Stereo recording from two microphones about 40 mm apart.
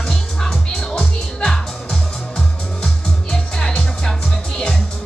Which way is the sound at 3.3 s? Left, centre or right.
Centre.